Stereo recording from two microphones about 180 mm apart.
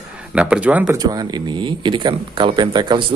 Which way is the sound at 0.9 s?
20° right (ahead or behind).